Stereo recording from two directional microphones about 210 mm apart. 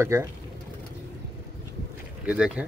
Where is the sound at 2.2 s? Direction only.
5° right (ahead or behind).